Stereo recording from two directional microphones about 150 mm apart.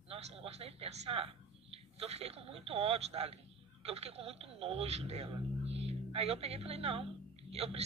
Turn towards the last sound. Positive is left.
turn(degrees=-40)  # may be behind; listen again after turning